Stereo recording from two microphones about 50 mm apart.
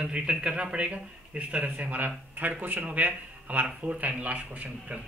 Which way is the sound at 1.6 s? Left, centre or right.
Right.